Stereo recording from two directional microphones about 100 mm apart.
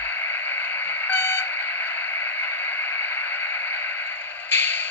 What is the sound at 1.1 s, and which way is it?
Radio, 25° left (ahead or behind).